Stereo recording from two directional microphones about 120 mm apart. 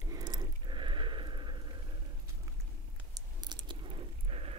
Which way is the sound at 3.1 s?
35° right (ahead or behind).